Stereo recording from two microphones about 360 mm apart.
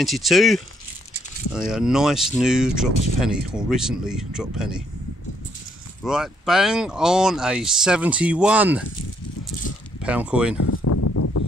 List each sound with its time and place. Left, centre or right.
0.0 s speech: centre
6.0 s speech: centre
10.0 s speech: centre
10.6 s a sound: left